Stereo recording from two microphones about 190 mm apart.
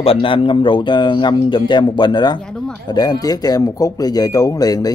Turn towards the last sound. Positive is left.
turn(degrees=20)  # may be behind; listen again after turning